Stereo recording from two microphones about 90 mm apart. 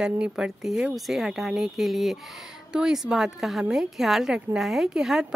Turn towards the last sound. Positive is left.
turn(degrees=-5)  # may be behind; listen again after turning